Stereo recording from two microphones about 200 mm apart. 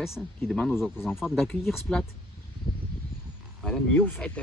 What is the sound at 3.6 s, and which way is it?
Speech, centre (ahead or behind).